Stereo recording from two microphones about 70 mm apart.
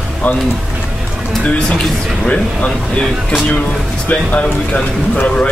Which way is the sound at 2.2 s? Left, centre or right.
Centre.